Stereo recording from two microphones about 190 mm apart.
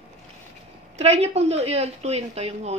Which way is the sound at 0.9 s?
35° right (ahead or behind).